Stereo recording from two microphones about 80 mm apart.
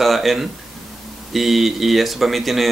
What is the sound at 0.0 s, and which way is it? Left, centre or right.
Speech, centre.